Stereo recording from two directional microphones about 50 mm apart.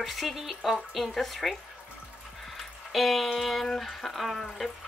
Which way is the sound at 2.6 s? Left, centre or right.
Centre.